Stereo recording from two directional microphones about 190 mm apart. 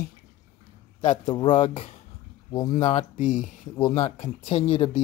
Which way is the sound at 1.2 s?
25° left (ahead or behind).